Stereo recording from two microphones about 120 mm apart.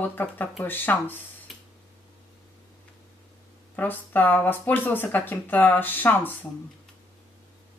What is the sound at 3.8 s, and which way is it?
Speech, 15° left (ahead or behind).